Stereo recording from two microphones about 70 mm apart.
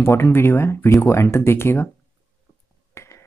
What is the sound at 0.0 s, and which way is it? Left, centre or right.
Speech, left.